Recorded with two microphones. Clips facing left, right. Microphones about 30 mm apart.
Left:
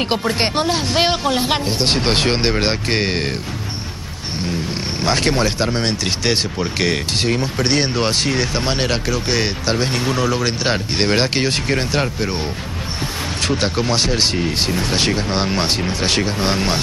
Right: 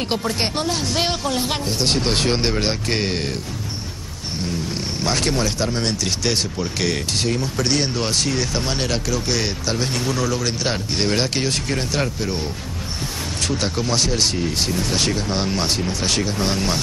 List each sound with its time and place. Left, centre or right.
0.0 s speech: left
5.0 s speech: left
13.4 s speech: left